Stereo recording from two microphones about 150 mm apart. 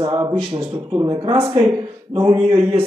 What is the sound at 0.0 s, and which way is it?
A man's voice, 25° right (ahead or behind).